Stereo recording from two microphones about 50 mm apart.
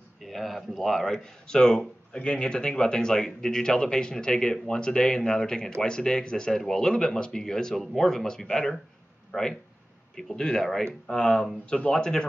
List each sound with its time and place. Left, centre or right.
0.2 s speech: centre
1.2 s speech: centre